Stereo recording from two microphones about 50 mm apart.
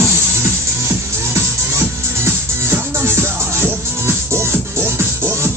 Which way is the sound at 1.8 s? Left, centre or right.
Right.